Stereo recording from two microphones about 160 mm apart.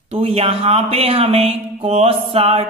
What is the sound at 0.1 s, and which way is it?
Speech, 40° right (ahead or behind).